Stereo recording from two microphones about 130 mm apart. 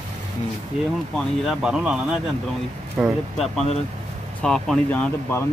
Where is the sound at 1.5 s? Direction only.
5° right (ahead or behind).